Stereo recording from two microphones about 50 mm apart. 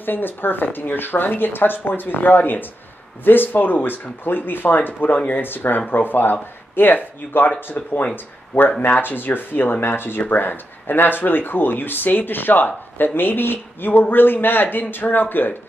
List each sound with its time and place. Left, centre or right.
0.0 s speech: left